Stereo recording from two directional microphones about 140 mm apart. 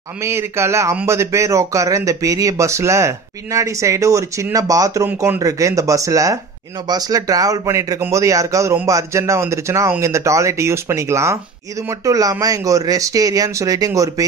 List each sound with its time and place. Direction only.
0.2 s speech: 20° right (ahead or behind)